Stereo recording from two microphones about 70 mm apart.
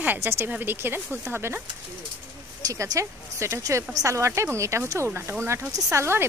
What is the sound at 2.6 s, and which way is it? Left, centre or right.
Speech, right.